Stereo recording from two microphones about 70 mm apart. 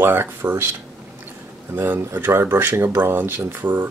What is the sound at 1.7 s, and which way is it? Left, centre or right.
Speech, right.